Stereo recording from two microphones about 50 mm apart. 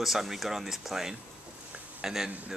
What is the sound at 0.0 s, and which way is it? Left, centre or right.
Speech, centre.